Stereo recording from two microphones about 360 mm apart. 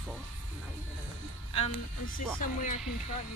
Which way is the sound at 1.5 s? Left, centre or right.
Centre.